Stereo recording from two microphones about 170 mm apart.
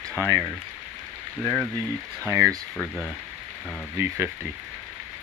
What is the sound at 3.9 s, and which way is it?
Speech, 15° right (ahead or behind).